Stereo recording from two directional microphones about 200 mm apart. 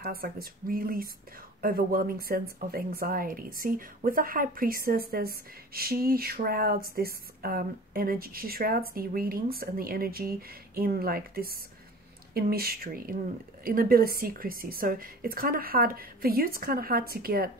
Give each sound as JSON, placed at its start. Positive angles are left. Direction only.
{"t": 0.0, "sound": "a woman's voice", "side_deg": -50}